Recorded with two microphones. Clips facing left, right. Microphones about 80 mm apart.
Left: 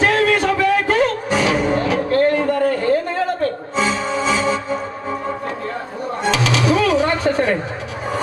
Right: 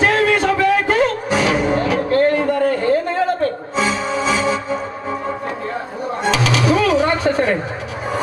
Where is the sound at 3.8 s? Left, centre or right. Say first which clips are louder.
Even; centre.